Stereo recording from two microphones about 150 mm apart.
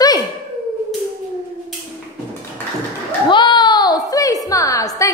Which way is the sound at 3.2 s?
30° left (ahead or behind).